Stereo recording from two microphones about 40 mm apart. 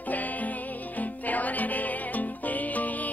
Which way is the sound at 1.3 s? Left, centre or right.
Left.